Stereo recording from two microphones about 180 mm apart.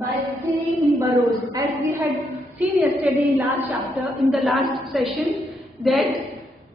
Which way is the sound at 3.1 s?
15° right (ahead or behind).